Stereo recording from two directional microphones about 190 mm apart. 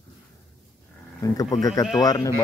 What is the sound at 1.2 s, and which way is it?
A man's voice, 20° left (ahead or behind).